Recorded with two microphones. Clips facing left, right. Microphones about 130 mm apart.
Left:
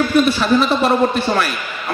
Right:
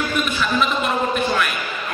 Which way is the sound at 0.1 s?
35° left (ahead or behind).